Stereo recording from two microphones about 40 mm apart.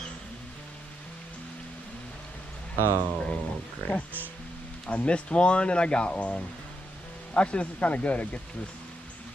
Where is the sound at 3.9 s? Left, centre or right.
Left.